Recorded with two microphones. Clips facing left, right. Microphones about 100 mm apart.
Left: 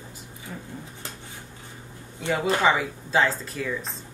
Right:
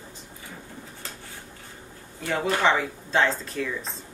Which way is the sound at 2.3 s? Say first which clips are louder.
Left 1 dB; 5° left (ahead or behind).